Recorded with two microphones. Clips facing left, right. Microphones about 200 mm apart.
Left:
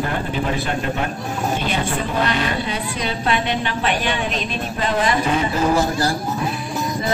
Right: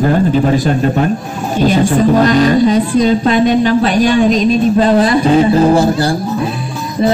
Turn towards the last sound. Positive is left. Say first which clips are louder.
# right 8 dB
turn(degrees=-30)  # may be behind; listen again after turning